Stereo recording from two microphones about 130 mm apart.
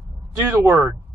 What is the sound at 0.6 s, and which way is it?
Speech, 20° right (ahead or behind).